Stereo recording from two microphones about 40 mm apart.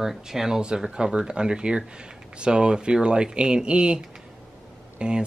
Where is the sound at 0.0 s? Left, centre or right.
Centre.